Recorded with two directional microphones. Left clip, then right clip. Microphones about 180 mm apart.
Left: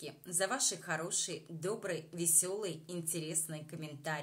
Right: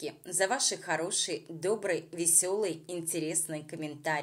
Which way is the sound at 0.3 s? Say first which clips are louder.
Right 6 dB; 25° right (ahead or behind).